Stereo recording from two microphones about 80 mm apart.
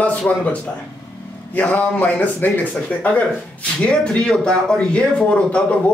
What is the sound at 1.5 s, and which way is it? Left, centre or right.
A man's voice, left.